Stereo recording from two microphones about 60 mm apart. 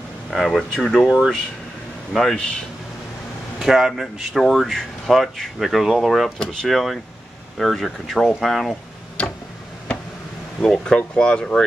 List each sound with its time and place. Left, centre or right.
0.3 s speech: centre
2.1 s speech: centre
3.5 s speech: centre
10.6 s speech: centre